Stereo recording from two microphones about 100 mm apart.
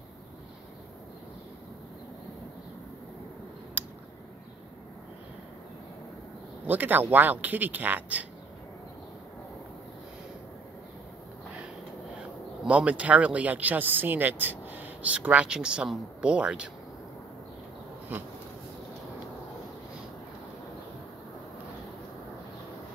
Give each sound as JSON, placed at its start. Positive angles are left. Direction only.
{"t": 3.8, "sound": "a sound", "side_deg": -15}
{"t": 6.6, "sound": "speech", "side_deg": -15}
{"t": 12.2, "sound": "speech", "side_deg": -10}